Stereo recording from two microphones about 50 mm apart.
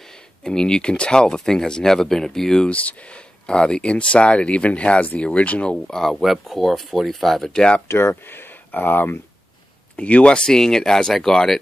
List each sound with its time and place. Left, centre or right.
0.0 s speech: centre
2.7 s speech: left
5.9 s speech: centre
7.5 s speech: centre
7.9 s speech: left
8.2 s speech: left
9.9 s speech: left; by 11.5 s centre